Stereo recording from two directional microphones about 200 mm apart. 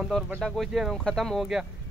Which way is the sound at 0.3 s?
Centre (ahead or behind).